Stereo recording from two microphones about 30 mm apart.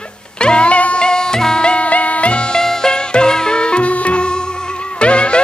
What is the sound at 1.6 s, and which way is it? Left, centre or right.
Music, left.